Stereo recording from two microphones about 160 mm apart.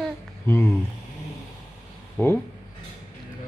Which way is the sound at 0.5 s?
15° left (ahead or behind).